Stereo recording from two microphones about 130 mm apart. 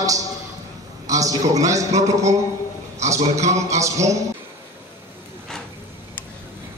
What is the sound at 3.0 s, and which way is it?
Speech, 60° right (ahead or behind).